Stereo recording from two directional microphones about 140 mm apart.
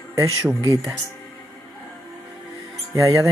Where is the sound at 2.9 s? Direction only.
20° right (ahead or behind).